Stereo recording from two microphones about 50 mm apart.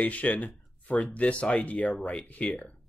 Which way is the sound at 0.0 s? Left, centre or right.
Left.